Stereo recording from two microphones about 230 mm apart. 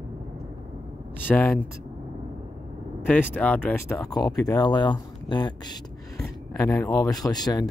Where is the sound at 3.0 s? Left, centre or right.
Centre.